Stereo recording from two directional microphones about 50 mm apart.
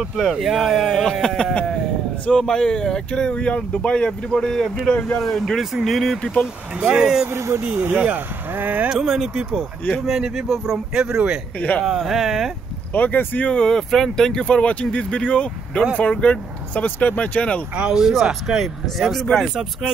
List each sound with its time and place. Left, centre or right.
0.2 s speech: centre
1.2 s speech: centre
4.9 s speech: left
5.2 s speech: centre
6.8 s speech: right
7.3 s speech: right
7.7 s speech: right
8.1 s speech: right
8.8 s speech: centre
11.8 s speech: centre
12.9 s speech: left
13.5 s speech: centre
17.8 s speech: centre